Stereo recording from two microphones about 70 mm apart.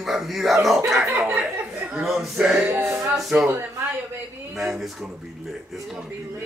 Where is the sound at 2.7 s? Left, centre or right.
Right.